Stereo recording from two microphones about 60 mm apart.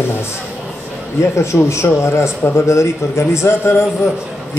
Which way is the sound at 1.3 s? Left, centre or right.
Left.